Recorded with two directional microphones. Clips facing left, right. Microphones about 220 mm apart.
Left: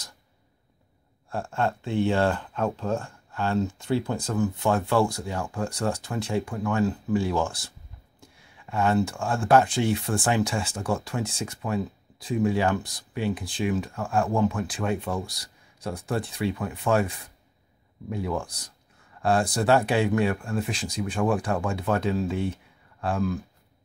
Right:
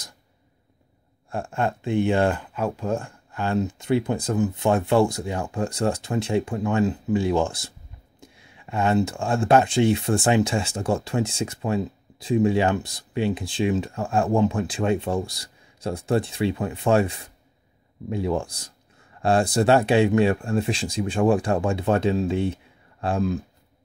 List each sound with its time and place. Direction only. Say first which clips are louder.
1.3 s speech: right 1 dB; 15° right (ahead or behind)